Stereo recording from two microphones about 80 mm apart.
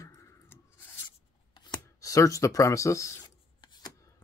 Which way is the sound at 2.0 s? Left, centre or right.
Left.